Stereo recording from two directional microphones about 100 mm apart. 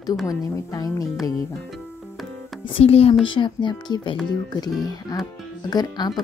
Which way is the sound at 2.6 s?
75° left (ahead or behind).